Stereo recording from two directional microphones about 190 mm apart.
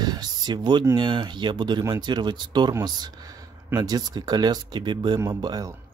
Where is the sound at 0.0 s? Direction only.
20° right (ahead or behind).